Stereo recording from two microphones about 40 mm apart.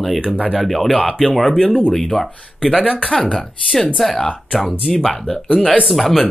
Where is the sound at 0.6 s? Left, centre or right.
Centre.